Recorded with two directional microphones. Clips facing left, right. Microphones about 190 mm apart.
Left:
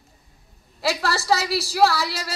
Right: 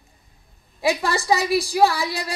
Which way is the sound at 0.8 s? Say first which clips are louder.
Right 3 dB; 15° right (ahead or behind).